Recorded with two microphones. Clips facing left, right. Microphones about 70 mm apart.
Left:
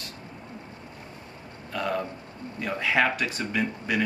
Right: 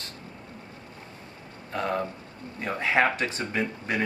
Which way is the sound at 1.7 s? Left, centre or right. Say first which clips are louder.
Even; right.